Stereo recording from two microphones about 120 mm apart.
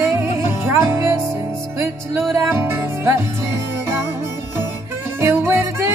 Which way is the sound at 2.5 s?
20° right (ahead or behind).